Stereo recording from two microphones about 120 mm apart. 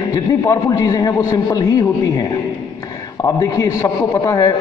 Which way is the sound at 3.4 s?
25° left (ahead or behind).